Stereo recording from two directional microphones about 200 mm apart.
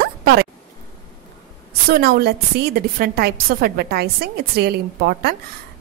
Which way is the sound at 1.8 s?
50° right (ahead or behind).